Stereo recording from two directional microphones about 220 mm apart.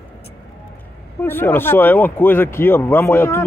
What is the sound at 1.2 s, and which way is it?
Speech, 10° left (ahead or behind).